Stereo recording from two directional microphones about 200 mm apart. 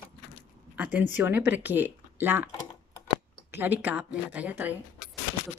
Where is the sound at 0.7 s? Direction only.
10° right (ahead or behind).